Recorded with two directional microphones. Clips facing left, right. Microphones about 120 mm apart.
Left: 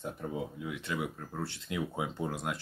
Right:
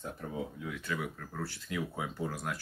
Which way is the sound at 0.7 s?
20° left (ahead or behind).